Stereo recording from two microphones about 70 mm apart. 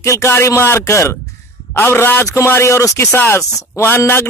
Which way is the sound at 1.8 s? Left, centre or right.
Left.